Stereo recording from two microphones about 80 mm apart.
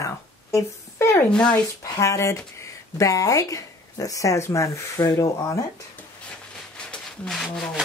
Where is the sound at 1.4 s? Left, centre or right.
Left.